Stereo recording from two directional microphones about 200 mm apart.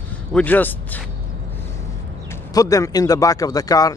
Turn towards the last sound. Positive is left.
turn(degrees=15)  # may be behind; listen again after turning